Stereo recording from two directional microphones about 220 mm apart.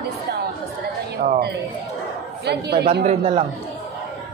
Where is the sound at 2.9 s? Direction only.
25° right (ahead or behind).